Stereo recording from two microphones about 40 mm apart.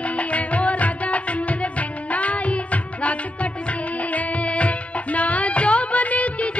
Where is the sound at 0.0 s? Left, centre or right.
Left.